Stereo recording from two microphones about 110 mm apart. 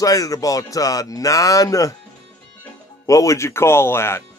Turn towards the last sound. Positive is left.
turn(degrees=20)  # may be behind; listen again after turning